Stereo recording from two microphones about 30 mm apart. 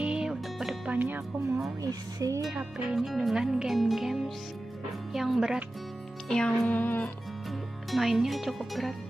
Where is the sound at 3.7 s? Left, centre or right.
Centre.